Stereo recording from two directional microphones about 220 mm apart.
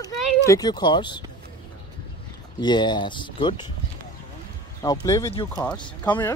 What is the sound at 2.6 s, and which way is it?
Speech, 20° left (ahead or behind).